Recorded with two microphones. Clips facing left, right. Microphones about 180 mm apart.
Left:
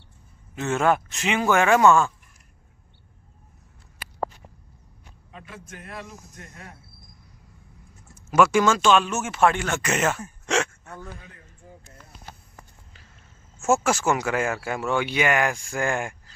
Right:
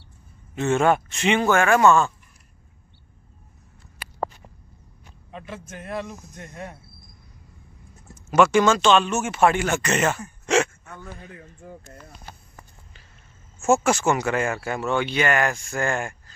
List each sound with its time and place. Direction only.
0.6 s speech: centre (ahead or behind)
1.5 s speech: 15° left (ahead or behind)
5.3 s speech: 25° right (ahead or behind)
8.3 s speech: 5° left (ahead or behind)
9.8 s speech: 5° left (ahead or behind)
10.4 s a sound: 5° right (ahead or behind)
11.6 s speech: 85° right
13.8 s speech: 5° left (ahead or behind)